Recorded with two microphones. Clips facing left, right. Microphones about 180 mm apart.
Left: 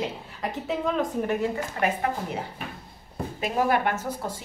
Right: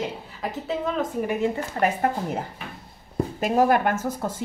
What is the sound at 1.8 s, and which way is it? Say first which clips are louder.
A woman's voice: right 4 dB; 45° right (ahead or behind).